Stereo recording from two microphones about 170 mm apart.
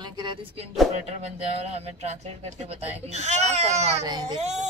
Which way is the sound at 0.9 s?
40° right (ahead or behind).